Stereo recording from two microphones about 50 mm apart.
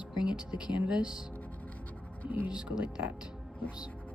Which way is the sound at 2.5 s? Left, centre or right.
Centre.